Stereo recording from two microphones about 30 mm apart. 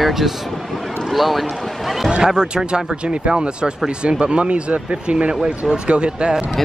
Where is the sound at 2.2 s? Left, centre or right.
Right.